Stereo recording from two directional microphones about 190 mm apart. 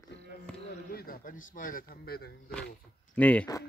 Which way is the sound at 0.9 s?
50° left (ahead or behind).